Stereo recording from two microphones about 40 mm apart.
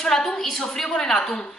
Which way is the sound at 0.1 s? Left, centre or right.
Centre.